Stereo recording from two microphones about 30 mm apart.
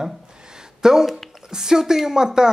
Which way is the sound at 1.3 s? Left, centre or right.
Centre.